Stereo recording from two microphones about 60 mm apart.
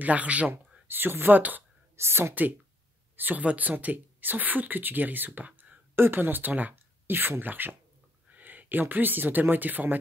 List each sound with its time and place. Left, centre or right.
0.0 s speech: right
0.8 s speech: right
2.0 s speech: right
3.2 s speech: right